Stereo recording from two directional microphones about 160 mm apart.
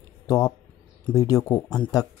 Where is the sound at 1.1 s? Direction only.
20° left (ahead or behind).